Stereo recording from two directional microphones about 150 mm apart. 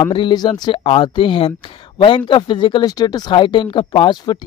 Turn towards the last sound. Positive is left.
turn(degrees=30)  # may be behind; listen again after turning